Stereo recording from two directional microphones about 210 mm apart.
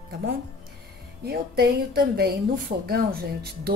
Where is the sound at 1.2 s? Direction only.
50° right (ahead or behind).